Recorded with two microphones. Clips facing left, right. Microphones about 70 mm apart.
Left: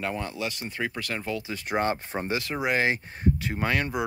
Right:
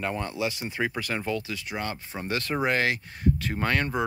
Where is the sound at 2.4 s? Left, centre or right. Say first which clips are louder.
Right 3 dB; centre.